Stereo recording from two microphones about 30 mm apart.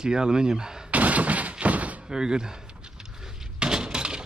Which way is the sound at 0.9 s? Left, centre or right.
Right.